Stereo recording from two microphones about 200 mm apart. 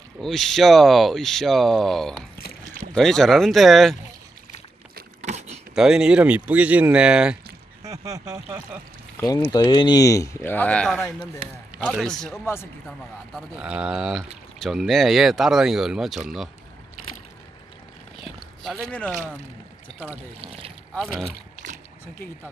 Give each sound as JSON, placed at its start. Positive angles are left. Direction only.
{"t": 0.2, "sound": "speech", "side_deg": 0}
{"t": 2.6, "sound": "rowboat", "side_deg": -40}
{"t": 2.9, "sound": "speech", "side_deg": 0}
{"t": 5.2, "sound": "power windows", "side_deg": -35}
{"t": 5.8, "sound": "speech", "side_deg": -5}
{"t": 7.8, "sound": "speech", "side_deg": -15}
{"t": 9.5, "sound": "speech", "side_deg": 20}
{"t": 13.3, "sound": "speech", "side_deg": -5}
{"t": 18.6, "sound": "speech", "side_deg": 5}
{"t": 20.3, "sound": "speech", "side_deg": -30}
{"t": 20.9, "sound": "speech", "side_deg": 0}
{"t": 21.6, "sound": "splash", "side_deg": -40}